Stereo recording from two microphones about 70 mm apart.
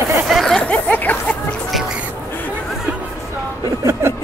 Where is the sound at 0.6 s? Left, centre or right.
Left.